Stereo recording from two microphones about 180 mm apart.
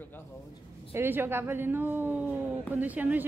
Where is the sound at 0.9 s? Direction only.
10° right (ahead or behind).